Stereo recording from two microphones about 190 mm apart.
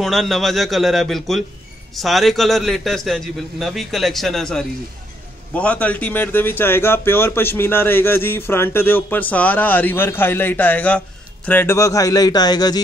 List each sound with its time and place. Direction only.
0.0 s a man's voice: centre (ahead or behind); by 12.8 s 20° left (ahead or behind)